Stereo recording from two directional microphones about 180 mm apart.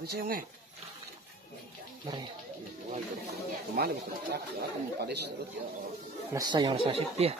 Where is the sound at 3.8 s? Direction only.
60° right (ahead or behind).